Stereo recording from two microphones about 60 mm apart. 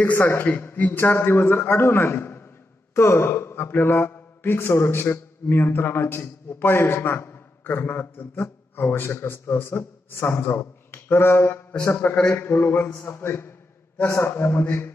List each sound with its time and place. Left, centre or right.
0.0 s a man's voice: left
1.0 s a man's voice: left